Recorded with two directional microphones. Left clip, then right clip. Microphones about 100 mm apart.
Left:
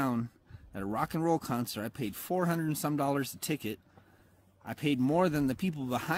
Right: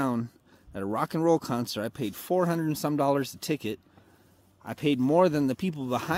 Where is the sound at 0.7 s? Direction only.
25° left (ahead or behind).